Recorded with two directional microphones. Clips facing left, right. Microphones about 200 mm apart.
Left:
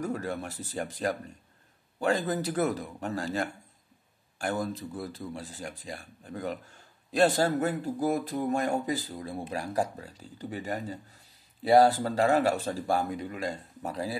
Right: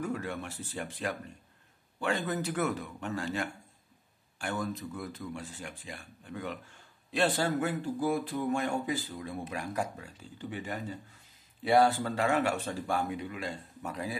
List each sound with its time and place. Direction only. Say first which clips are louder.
0.0 s speech: left 3 dB; 40° left (ahead or behind)